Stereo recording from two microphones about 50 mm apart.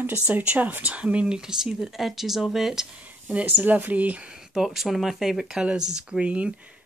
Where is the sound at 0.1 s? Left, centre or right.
Right; by 2.9 s centre.